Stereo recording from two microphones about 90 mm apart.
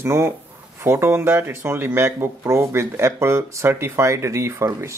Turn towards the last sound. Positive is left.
turn(degrees=-30)  # may be behind; listen again after turning